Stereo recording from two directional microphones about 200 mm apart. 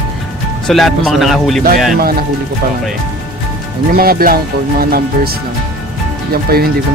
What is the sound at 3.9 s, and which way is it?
Speech, 50° right (ahead or behind).